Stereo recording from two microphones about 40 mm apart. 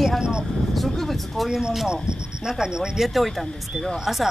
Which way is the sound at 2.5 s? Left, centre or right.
Centre.